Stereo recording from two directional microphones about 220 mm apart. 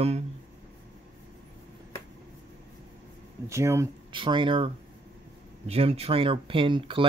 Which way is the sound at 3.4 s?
10° right (ahead or behind).